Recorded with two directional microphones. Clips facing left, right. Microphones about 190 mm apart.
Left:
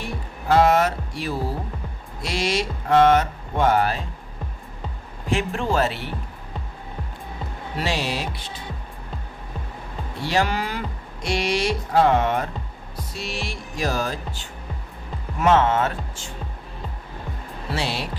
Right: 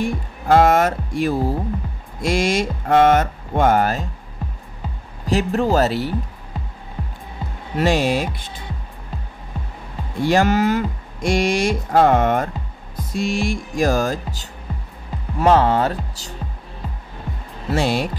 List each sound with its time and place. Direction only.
0.0 s speech: 50° right (ahead or behind)
5.2 s speech: 40° right (ahead or behind)
7.7 s speech: 50° right (ahead or behind)
10.2 s speech: 45° right (ahead or behind)
17.7 s speech: 50° right (ahead or behind)